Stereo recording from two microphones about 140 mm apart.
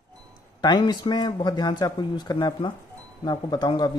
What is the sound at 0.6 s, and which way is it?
Speech, 30° left (ahead or behind).